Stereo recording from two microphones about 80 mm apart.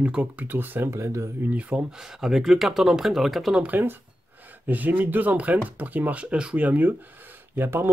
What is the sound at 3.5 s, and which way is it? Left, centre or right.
Speech, right.